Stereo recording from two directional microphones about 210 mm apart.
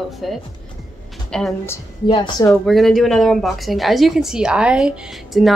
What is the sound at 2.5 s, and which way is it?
Speech, centre (ahead or behind).